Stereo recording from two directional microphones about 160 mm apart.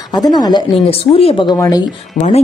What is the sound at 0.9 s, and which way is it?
Speech, 35° left (ahead or behind).